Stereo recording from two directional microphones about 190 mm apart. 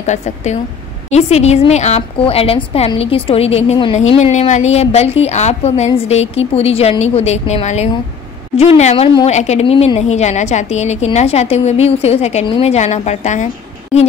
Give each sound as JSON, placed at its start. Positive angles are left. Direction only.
{"t": 0.0, "sound": "a woman's voice", "side_deg": 40}